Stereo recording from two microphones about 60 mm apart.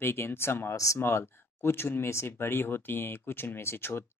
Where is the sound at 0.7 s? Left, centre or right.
Left.